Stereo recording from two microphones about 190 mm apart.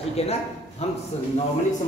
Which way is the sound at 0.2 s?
35° left (ahead or behind).